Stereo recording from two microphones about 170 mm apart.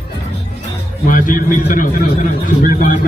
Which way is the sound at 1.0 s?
50° left (ahead or behind).